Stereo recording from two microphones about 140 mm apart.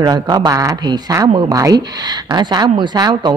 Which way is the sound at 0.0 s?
30° right (ahead or behind).